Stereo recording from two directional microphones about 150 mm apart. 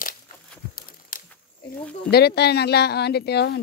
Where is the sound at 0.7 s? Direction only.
70° left (ahead or behind).